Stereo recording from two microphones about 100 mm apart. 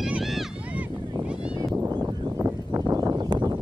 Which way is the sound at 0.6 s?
15° right (ahead or behind).